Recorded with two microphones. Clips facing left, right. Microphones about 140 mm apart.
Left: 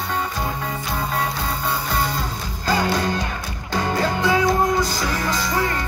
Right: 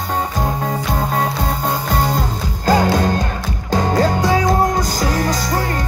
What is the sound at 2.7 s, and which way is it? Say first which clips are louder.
Music: right 6 dB; 45° right (ahead or behind).